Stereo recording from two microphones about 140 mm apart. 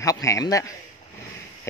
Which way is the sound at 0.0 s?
20° left (ahead or behind).